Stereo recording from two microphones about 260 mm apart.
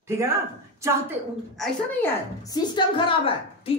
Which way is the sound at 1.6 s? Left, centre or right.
Centre.